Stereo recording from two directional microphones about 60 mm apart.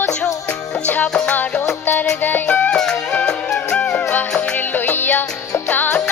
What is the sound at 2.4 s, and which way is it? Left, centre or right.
Music, centre.